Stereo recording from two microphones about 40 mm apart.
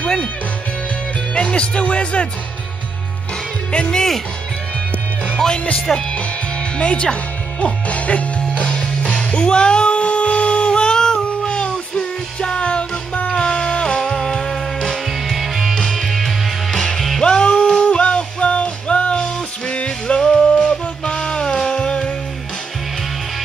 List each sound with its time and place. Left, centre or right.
0.0 s music: left
1.3 s speech: left
3.7 s speech: left
5.9 s speech: centre
7.6 s music: left; by 15.0 s centre
15.0 s music: centre
15.9 s music: centre